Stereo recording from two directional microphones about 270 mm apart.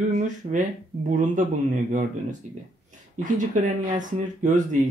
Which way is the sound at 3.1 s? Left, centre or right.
Right.